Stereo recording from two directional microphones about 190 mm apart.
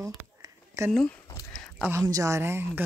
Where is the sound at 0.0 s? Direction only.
15° right (ahead or behind).